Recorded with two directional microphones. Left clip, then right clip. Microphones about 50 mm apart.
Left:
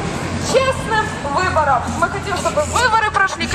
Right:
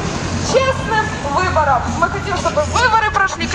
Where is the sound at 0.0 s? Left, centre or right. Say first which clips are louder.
Right 1 dB; right.